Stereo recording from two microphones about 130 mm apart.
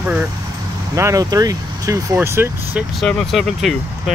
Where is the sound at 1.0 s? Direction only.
25° right (ahead or behind).